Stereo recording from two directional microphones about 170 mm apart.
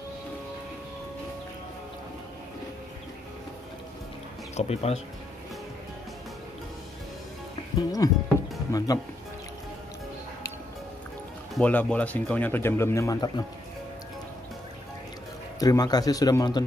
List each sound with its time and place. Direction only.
4.6 s speech: 40° left (ahead or behind)
7.8 s speech: 20° left (ahead or behind)
11.5 s speech: 10° left (ahead or behind)
15.6 s speech: 20° left (ahead or behind)